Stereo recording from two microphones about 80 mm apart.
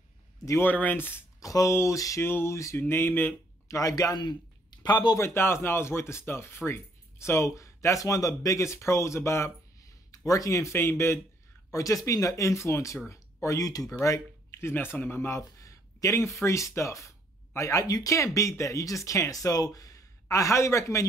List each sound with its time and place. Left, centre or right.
0.6 s speech: left
1.4 s speech: left
3.6 s a man's voice: left
5.1 s speech: left
11.7 s speech: left
14.6 s speech: left